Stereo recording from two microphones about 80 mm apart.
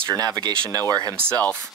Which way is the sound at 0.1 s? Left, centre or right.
Right.